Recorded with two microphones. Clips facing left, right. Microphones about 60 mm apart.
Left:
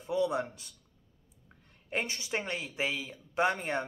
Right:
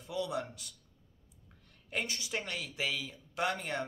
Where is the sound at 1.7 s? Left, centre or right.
Left.